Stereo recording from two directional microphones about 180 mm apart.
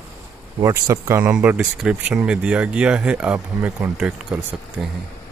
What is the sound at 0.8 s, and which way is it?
Speech, 15° right (ahead or behind).